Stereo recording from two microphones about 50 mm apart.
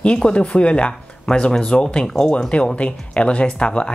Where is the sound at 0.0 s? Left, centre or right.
Left.